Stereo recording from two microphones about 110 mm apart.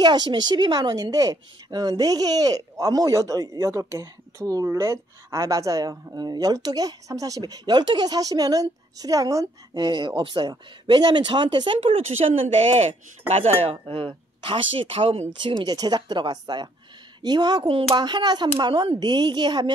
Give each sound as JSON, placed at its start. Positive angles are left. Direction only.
{"t": 0.0, "sound": "speech", "side_deg": -40}
{"t": 15.4, "sound": "speech", "side_deg": -35}
{"t": 17.6, "sound": "speech", "side_deg": -60}
{"t": 18.0, "sound": "speech", "side_deg": -40}